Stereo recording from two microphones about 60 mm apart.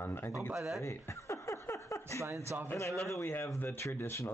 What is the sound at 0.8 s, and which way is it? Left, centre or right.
Chuckle, left.